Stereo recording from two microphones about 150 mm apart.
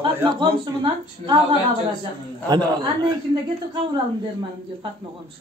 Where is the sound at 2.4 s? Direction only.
30° right (ahead or behind).